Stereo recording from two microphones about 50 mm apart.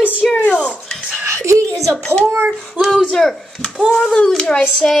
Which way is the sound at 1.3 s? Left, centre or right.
Right.